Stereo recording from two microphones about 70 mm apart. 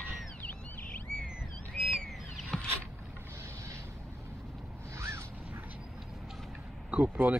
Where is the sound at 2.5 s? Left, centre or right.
Centre.